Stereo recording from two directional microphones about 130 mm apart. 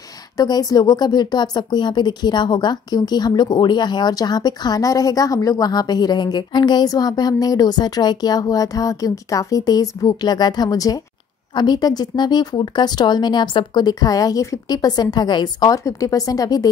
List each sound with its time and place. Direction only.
0.4 s a woman's voice: 30° left (ahead or behind)